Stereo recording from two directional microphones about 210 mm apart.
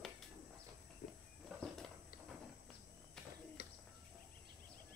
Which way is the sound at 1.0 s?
45° left (ahead or behind).